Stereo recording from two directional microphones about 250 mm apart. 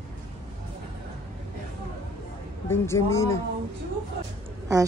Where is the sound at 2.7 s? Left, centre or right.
Centre.